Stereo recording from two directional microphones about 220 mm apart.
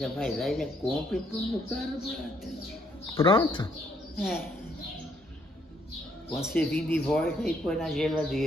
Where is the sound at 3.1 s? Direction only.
20° left (ahead or behind).